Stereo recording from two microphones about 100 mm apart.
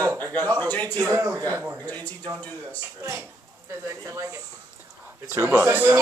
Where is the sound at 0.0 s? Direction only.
35° right (ahead or behind).